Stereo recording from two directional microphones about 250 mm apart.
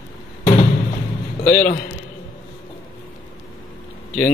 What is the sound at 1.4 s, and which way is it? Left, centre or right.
Speech, centre.